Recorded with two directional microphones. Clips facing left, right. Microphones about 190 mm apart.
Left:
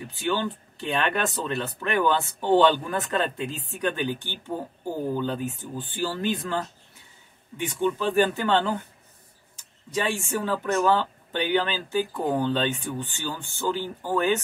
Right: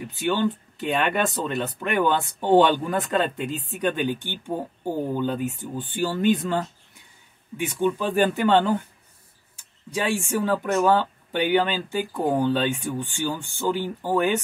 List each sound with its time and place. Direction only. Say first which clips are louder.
0.3 s speech: right 4 dB; 15° right (ahead or behind)
9.8 s speech: right 2 dB; 10° right (ahead or behind)